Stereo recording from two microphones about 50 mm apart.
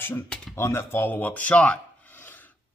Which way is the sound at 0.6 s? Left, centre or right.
Left.